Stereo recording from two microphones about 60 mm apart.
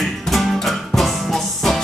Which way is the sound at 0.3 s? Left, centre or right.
Centre.